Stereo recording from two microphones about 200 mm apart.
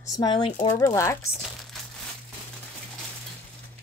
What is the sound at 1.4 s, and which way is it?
Crumpling, centre (ahead or behind).